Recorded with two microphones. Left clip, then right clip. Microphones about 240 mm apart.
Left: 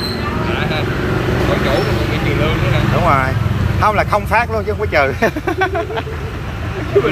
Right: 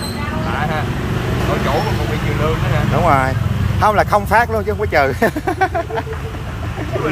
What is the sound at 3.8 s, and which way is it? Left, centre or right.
Speech, right.